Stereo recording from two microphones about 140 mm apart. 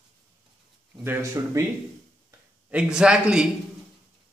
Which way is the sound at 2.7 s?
5° right (ahead or behind).